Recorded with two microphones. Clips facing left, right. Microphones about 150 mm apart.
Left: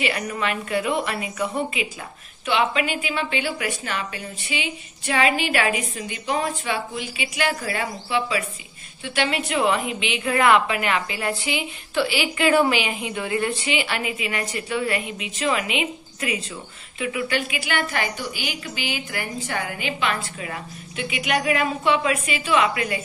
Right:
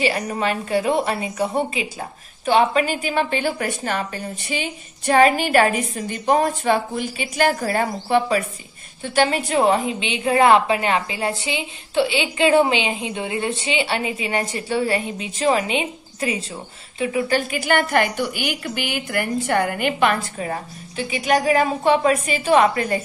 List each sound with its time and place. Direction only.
0.0 s a woman's voice: 35° right (ahead or behind)